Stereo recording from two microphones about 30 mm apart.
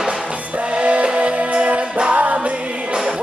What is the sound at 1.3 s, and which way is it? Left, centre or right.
Music, right.